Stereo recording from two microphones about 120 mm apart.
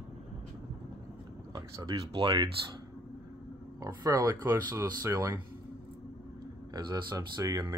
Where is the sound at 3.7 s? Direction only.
30° right (ahead or behind).